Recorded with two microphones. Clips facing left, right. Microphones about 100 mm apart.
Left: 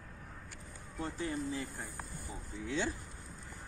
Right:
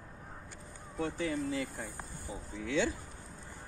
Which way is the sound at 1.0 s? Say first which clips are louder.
Right 4 dB; 90° right.